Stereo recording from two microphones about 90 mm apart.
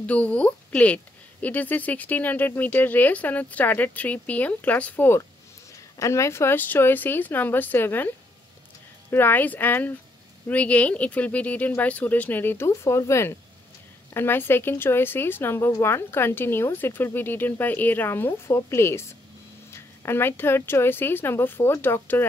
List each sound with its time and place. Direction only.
0.0 s speech: 15° left (ahead or behind)
5.9 s speech: 35° left (ahead or behind)
9.1 s speech: 20° left (ahead or behind)